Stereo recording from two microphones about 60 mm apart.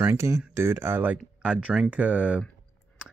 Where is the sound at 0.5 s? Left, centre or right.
Right.